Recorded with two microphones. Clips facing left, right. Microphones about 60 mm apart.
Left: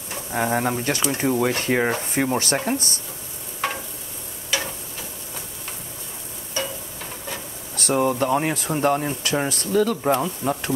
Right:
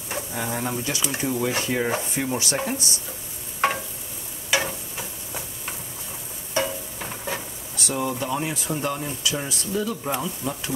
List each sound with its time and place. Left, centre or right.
0.3 s speech: left
2.5 s speech: left
4.5 s stir: centre
6.5 s a sound: centre
7.7 s speech: left
10.0 s speech: left